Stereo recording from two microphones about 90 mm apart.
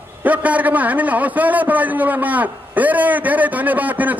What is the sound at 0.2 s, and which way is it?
A man's voice, 15° right (ahead or behind).